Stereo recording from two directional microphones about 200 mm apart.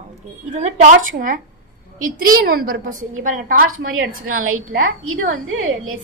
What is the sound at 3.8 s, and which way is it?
A woman's voice, 90° right.